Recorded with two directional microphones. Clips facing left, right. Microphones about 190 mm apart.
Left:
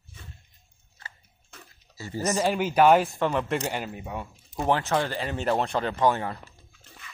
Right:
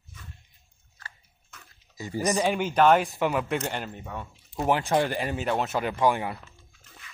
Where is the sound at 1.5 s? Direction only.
35° left (ahead or behind).